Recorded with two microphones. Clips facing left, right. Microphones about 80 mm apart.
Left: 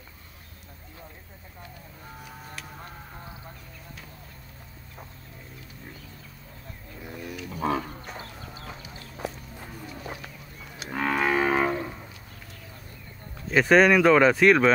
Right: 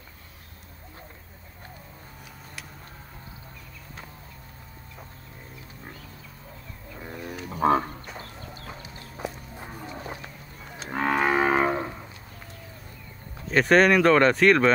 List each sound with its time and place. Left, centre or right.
7.0 s cattle: right
8.2 s a sound: right
9.1 s walk: centre
9.7 s horse: right
10.9 s livestock: right
13.5 s speech: centre